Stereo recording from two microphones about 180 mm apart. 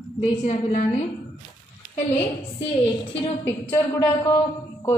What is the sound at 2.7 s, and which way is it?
Speech, 30° left (ahead or behind).